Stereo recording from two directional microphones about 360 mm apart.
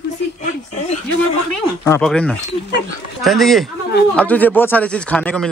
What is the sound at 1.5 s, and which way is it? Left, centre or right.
A man's voice, centre.